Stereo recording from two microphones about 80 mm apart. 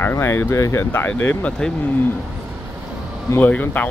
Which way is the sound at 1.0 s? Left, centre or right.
Centre.